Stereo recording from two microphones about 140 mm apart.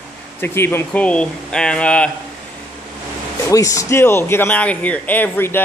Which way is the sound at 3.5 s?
25° left (ahead or behind).